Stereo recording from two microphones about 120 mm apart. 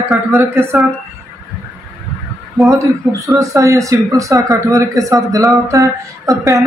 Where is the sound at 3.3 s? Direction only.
25° right (ahead or behind).